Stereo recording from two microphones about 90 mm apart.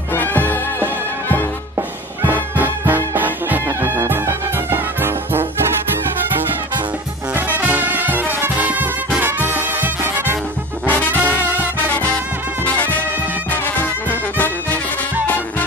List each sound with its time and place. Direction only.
0.1 s music: 20° left (ahead or behind)
1.8 s music: 20° right (ahead or behind)
7.5 s music: 20° right (ahead or behind)
10.9 s trombone: 20° left (ahead or behind)
11.4 s music: 20° right (ahead or behind)
12.6 s music: 20° left (ahead or behind)
14.3 s music: 20° left (ahead or behind)